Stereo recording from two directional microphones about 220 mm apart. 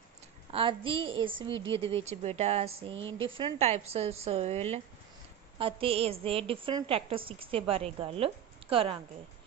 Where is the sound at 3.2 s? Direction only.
25° right (ahead or behind).